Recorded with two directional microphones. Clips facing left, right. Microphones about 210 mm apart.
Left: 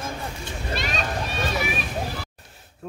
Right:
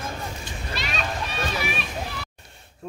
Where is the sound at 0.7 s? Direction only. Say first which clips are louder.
Left 3 dB; 45° left (ahead or behind).